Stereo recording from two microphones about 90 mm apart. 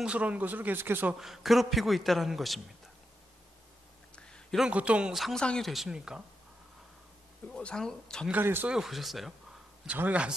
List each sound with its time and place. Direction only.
0.0 s speech: 15° right (ahead or behind)
1.2 s a man's voice: centre (ahead or behind)
4.1 s a sound: 10° left (ahead or behind)
4.6 s speech: 15° right (ahead or behind)
5.1 s a man's voice: centre (ahead or behind)
5.4 s speech: 10° left (ahead or behind)
5.7 s speech: 5° right (ahead or behind)
7.5 s speech: 10° left (ahead or behind)
8.3 s speech: 25° right (ahead or behind)
8.6 s a man's voice: 5° right (ahead or behind)
9.8 s speech: 15° right (ahead or behind)